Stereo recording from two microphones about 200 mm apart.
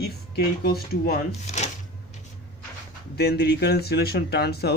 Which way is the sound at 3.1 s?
55° left (ahead or behind).